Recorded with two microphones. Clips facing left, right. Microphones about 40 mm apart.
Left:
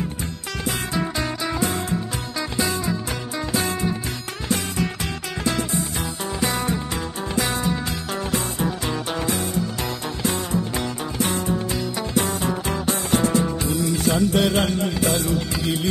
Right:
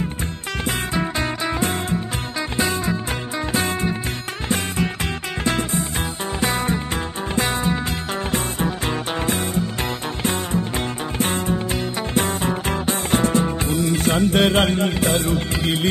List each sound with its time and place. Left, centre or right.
0.7 s music: right
5.4 s music: right
11.1 s music: right